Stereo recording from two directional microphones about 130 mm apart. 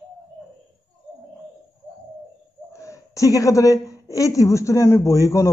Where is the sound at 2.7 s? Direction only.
25° left (ahead or behind).